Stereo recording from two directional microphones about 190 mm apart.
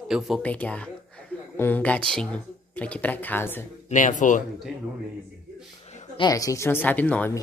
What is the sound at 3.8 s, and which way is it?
Speech, 40° left (ahead or behind).